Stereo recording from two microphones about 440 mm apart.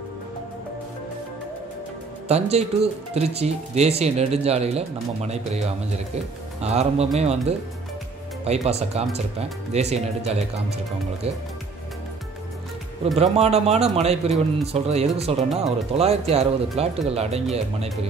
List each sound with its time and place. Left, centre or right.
2.2 s speech: centre
13.2 s speech: centre